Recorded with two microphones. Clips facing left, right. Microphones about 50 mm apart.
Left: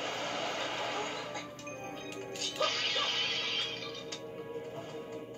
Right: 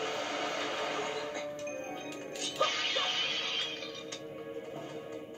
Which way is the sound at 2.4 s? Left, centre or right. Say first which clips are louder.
Right 2 dB; right.